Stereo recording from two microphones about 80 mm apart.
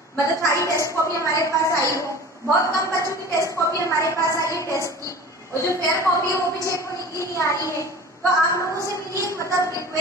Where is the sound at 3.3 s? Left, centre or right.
Left.